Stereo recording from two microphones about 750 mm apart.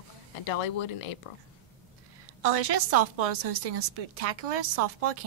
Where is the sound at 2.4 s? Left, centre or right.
Right.